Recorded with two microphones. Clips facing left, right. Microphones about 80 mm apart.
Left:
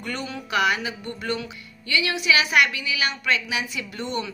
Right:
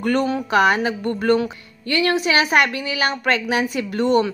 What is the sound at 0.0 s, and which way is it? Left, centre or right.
Speech, right.